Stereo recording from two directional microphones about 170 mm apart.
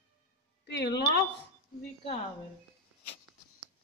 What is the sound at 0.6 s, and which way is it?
Speech, 80° left.